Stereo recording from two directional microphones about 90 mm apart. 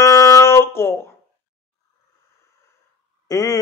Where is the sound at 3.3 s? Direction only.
40° left (ahead or behind).